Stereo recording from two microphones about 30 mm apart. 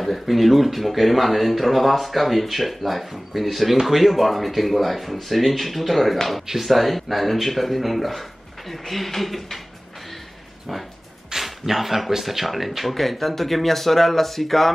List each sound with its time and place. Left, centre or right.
0.0 s speech: centre
11.3 s speech: centre